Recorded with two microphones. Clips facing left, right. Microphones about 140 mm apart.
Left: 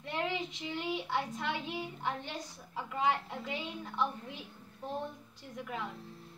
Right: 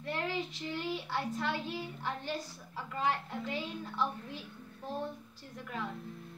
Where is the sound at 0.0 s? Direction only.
20° left (ahead or behind).